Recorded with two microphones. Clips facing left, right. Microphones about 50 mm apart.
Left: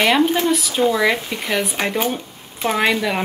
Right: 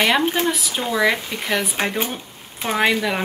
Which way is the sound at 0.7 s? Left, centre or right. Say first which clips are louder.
Left 2 dB; centre.